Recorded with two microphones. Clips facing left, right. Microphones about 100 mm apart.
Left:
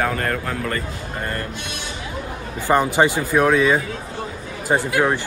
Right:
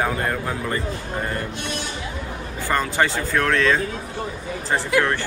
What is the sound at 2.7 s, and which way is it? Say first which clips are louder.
Speech: left 5 dB; 20° left (ahead or behind).